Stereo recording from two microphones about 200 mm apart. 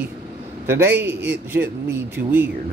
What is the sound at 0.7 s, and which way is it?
A man's voice, 10° right (ahead or behind).